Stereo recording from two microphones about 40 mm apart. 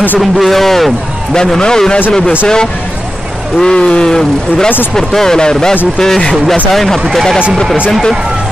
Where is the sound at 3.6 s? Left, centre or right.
Left.